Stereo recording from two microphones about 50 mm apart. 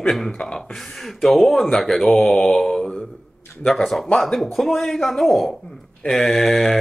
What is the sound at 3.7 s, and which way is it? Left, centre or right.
Mantra, centre.